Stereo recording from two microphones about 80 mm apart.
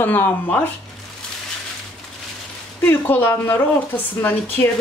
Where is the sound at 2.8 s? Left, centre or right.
Left.